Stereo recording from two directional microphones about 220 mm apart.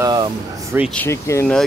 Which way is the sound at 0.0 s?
20° right (ahead or behind).